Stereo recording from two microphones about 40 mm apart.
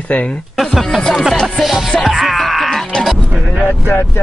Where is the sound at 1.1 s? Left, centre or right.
Centre.